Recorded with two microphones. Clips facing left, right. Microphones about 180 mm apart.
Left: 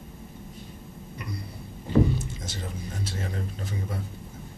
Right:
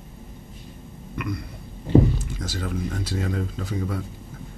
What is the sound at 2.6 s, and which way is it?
Speech, 90° right.